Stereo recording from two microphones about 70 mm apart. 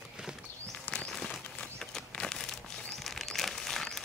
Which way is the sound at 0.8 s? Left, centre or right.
Centre.